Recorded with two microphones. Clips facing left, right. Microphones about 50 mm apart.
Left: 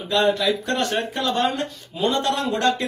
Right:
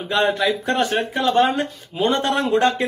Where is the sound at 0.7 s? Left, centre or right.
Centre.